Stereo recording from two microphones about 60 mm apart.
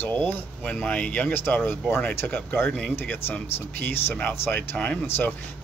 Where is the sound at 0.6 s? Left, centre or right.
Centre.